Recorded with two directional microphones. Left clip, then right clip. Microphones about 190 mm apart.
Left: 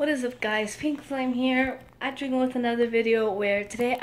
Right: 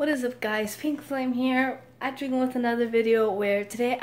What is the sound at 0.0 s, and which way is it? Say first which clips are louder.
Speech: even; 5° right (ahead or behind).